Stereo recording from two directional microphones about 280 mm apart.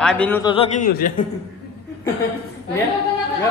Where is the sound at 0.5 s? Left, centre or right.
Left.